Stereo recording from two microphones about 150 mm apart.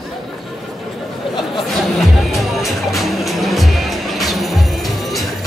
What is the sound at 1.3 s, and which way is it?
A woman's voice, centre (ahead or behind).